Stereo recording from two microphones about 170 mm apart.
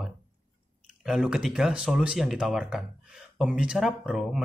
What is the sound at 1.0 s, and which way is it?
Speech, 5° right (ahead or behind).